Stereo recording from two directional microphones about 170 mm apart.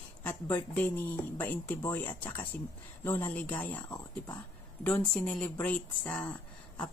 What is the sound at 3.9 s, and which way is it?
Speech, 20° left (ahead or behind).